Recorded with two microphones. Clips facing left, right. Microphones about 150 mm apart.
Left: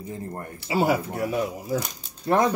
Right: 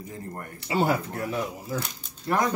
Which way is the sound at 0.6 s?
5° left (ahead or behind).